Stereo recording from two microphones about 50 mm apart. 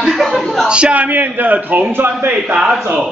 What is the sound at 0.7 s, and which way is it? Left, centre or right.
Speech, right.